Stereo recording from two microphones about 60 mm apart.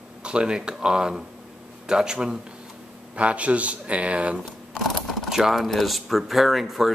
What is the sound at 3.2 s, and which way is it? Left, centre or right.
Speech, right.